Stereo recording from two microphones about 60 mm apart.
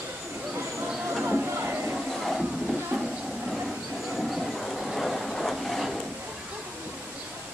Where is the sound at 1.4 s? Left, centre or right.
Right.